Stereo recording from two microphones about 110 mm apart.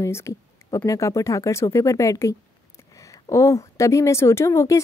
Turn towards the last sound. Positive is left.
turn(degrees=25)  # may be behind; listen again after turning